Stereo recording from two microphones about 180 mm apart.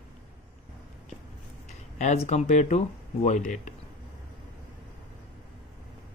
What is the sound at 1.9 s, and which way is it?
Speech, 40° left (ahead or behind).